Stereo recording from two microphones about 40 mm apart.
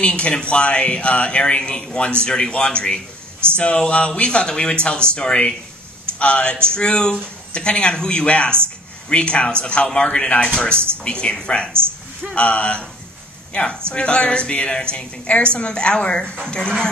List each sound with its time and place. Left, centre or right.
0.0 s speech: left
5.2 s speech: centre
6.1 s speech: left
8.3 s speech: left
9.8 s speech: centre
11.1 s speech: left